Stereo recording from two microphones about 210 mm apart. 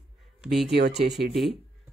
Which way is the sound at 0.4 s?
Centre (ahead or behind).